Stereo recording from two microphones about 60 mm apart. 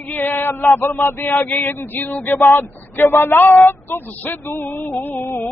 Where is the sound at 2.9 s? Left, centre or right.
Left.